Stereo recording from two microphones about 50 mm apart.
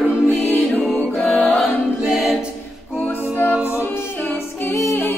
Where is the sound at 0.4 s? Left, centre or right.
Left.